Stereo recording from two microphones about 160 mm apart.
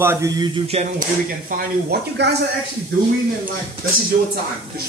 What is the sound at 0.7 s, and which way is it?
Speech, 50° right (ahead or behind).